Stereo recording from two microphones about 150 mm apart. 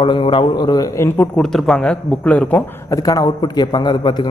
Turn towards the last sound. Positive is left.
turn(degrees=30)  # may be behind; listen again after turning